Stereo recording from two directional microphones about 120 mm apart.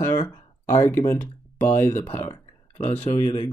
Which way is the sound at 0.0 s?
30° left (ahead or behind).